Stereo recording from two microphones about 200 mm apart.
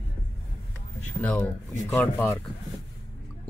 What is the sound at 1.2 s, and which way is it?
Speech, 5° left (ahead or behind).